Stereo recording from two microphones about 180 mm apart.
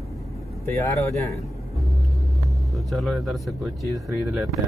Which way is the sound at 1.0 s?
15° left (ahead or behind).